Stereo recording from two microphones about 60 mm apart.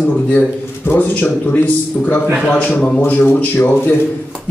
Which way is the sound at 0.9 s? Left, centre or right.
Left.